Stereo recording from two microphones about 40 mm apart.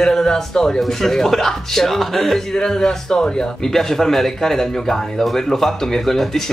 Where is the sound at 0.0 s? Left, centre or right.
Centre.